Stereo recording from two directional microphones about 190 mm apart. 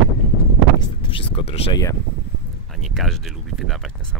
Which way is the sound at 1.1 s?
30° left (ahead or behind).